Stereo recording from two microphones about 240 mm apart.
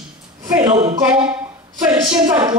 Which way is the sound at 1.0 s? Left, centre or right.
Centre.